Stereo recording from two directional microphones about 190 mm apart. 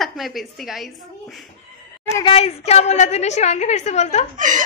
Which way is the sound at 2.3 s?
35° left (ahead or behind).